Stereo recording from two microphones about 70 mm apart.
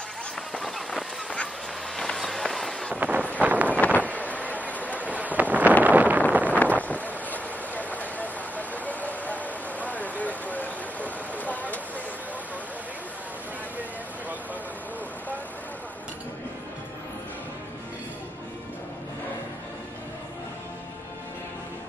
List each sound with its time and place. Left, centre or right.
0.6 s a sound: centre
2.9 s wind noise: right
4.1 s train: left
5.0 s wind noise: right
6.6 s wind noise: left